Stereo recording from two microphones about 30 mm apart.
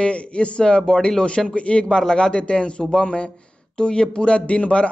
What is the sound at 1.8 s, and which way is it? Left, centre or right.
A man's voice, left.